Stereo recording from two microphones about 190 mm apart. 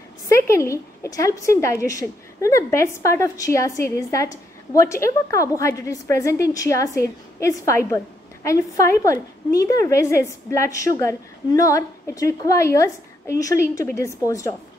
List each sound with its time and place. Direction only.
0.3 s a woman's voice: 15° left (ahead or behind)